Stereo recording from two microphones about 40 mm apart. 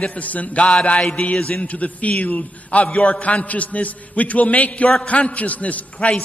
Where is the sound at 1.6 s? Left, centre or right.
Left.